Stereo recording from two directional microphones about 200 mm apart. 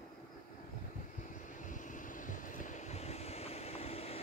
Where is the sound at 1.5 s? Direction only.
40° left (ahead or behind).